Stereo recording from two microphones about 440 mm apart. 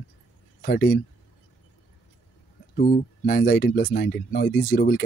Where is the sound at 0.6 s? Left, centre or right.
Left.